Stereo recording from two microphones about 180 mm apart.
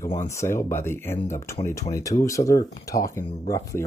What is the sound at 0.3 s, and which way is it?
Speech, 15° left (ahead or behind).